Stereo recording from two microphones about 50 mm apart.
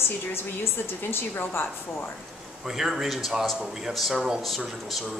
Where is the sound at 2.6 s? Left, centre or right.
Centre.